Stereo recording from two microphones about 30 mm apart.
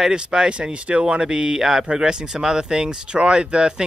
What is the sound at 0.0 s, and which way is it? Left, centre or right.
Speech, right.